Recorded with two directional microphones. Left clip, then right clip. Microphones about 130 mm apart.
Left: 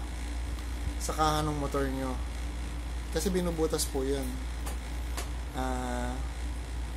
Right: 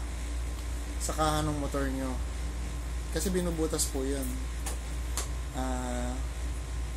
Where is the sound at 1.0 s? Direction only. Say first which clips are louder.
Left 1 dB; 20° left (ahead or behind).